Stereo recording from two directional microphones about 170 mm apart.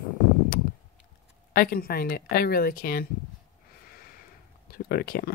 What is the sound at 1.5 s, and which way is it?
Speech, 60° left (ahead or behind).